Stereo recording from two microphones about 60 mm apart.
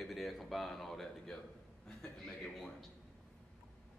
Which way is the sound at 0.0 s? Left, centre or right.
Centre.